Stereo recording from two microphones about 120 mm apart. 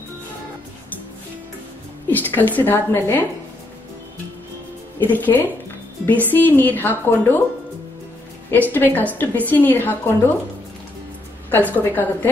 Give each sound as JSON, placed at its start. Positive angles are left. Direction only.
{"t": 2.0, "sound": "a woman's voice", "side_deg": 15}
{"t": 5.0, "sound": "a woman's voice", "side_deg": 15}
{"t": 8.5, "sound": "a woman's voice", "side_deg": 15}
{"t": 11.5, "sound": "a woman's voice", "side_deg": 15}